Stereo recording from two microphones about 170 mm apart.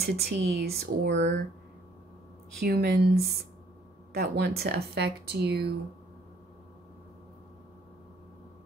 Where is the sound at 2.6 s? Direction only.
65° right (ahead or behind).